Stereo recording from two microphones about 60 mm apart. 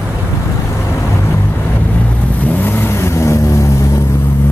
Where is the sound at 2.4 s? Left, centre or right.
Left.